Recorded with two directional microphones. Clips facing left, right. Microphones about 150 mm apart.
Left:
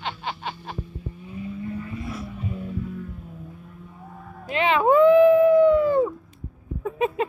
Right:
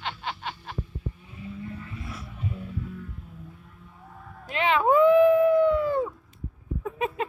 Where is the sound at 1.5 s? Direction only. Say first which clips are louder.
Left 5 dB; 15° left (ahead or behind).